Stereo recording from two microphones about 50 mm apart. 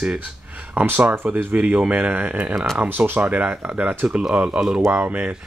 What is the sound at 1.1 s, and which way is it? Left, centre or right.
Speech, right.